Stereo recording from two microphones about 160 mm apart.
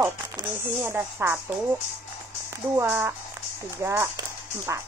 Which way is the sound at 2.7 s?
15° right (ahead or behind).